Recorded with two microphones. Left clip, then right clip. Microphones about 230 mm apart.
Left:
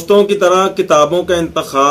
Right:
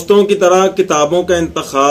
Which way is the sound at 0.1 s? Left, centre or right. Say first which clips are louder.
Right 1 dB; centre.